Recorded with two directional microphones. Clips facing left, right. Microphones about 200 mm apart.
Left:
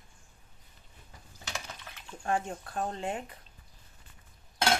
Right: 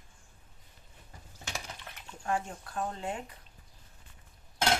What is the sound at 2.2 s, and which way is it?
Speech, 25° left (ahead or behind).